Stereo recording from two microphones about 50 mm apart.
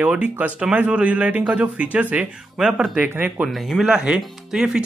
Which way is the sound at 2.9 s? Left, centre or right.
Right.